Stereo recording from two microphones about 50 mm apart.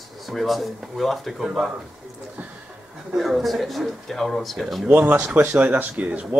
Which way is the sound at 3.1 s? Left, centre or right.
Centre.